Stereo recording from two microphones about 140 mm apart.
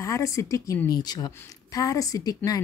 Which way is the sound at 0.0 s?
20° left (ahead or behind).